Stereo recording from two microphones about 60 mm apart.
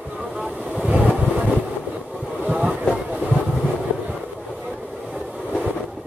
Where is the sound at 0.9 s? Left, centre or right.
Centre.